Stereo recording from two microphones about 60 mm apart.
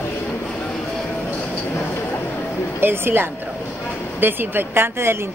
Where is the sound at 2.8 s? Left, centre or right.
Right.